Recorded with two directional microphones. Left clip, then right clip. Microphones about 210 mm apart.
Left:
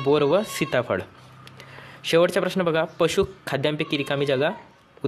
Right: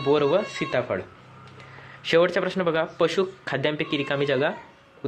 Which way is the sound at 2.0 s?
30° left (ahead or behind).